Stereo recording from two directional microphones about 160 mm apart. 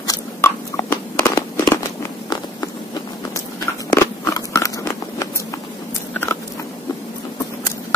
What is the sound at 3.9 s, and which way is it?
Biting, 20° left (ahead or behind).